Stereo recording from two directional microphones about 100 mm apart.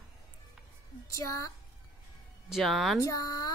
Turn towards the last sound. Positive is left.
turn(degrees=40)  # may be behind; listen again after turning